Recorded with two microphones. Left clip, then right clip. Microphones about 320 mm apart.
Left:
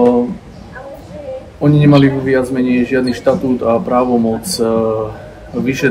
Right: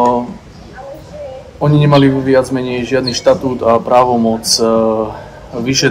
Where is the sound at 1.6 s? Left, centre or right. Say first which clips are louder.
Even; centre.